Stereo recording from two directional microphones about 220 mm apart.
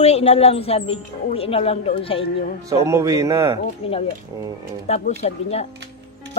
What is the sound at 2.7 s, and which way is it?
Speech, 15° right (ahead or behind).